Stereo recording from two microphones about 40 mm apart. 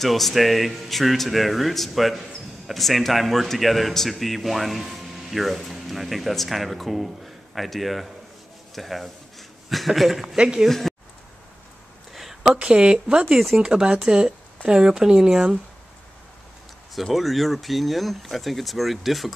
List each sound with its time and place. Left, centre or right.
0.0 s speech: centre
10.2 s a woman's voice: right
10.7 s speech: centre
12.1 s a sound: centre
12.5 s a woman's voice: right
13.3 s speech: centre
13.6 s speech: right
16.9 s speech: centre